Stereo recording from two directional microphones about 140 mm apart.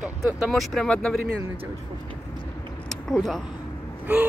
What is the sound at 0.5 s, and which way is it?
Speech, centre (ahead or behind).